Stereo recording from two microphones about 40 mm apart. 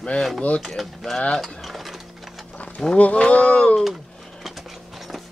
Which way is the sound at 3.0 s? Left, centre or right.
Left.